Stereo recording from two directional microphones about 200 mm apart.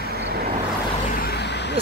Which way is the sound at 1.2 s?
50° left (ahead or behind).